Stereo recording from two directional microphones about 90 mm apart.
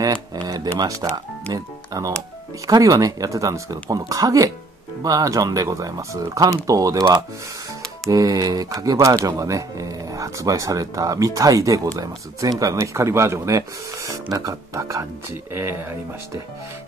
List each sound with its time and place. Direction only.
0.4 s speech: 45° right (ahead or behind)